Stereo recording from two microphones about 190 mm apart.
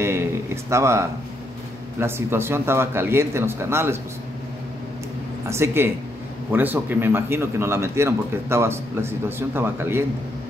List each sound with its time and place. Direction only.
0.0 s a sound: 15° right (ahead or behind)
2.0 s a man's voice: 10° right (ahead or behind)
5.5 s a man's voice: 15° right (ahead or behind)